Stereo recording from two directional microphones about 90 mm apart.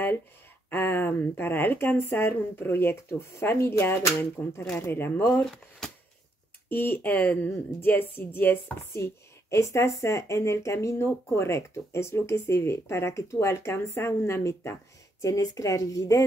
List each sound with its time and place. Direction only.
0.7 s speech: 25° left (ahead or behind)
5.4 s speech: 5° left (ahead or behind)
6.7 s a woman's voice: 20° left (ahead or behind)
15.2 s a woman's voice: 40° left (ahead or behind)